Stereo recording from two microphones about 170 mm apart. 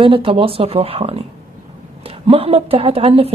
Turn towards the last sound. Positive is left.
turn(degrees=-35)  # may be behind; listen again after turning